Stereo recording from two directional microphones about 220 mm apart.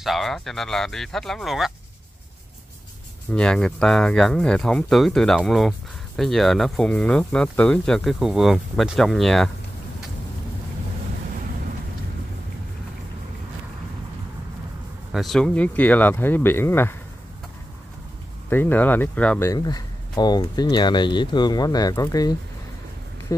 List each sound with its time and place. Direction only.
0.0 s speech: centre (ahead or behind)
3.3 s speech: 5° left (ahead or behind)
15.1 s speech: centre (ahead or behind)
18.5 s speech: 10° left (ahead or behind)